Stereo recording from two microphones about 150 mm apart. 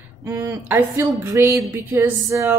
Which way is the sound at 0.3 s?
15° right (ahead or behind).